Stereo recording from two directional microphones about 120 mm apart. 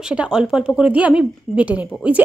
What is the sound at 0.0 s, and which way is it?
A woman's voice, 5° right (ahead or behind).